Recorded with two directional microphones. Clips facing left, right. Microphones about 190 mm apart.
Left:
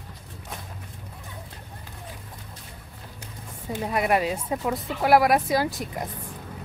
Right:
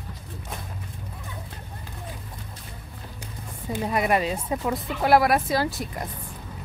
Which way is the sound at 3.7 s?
5° left (ahead or behind).